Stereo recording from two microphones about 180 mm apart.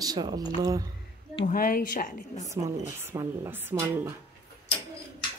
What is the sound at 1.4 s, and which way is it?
A woman's voice, 50° left (ahead or behind).